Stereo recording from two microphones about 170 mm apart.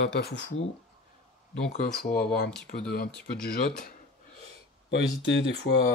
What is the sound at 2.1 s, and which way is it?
Speech, 65° left (ahead or behind).